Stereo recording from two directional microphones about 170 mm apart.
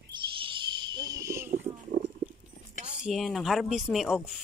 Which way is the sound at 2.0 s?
55° right (ahead or behind).